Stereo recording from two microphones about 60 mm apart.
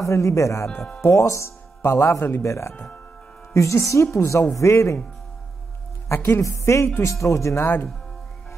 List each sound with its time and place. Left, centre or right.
0.0 s speech: left
1.8 s speech: left
2.4 s speech: left
2.7 s speech: left
3.5 s speech: left
6.0 s a woman's voice: left
6.4 s speech: left
7.6 s speech: left